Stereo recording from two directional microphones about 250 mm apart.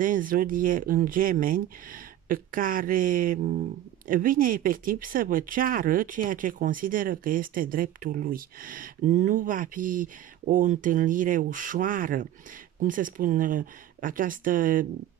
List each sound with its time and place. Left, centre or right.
0.0 s speech: right